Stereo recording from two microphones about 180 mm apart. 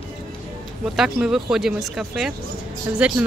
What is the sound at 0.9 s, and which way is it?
A woman's voice, 5° right (ahead or behind).